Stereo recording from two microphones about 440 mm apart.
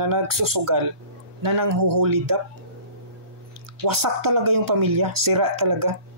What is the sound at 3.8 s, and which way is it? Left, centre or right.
Speech, right.